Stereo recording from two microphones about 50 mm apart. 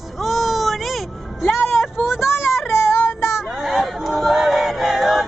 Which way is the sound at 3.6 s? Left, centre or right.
Centre.